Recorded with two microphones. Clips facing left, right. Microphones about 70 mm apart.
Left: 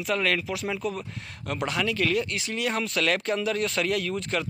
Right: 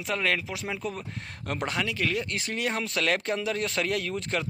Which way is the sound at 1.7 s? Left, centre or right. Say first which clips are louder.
Left 5 dB; centre.